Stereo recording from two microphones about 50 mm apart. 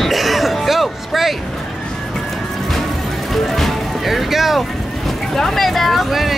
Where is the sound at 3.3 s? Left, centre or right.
Centre.